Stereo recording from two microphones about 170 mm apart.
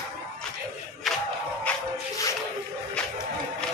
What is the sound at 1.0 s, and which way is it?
Battle cry, centre (ahead or behind).